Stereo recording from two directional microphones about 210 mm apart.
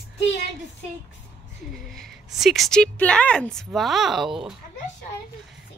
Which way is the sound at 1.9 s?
Centre (ahead or behind).